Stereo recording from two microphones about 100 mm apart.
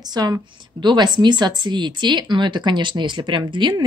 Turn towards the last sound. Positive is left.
turn(degrees=-55)  # may be behind; listen again after turning